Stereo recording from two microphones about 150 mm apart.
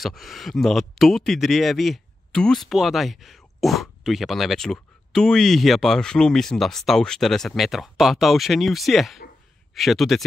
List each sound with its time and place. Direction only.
0.0 s speech: centre (ahead or behind)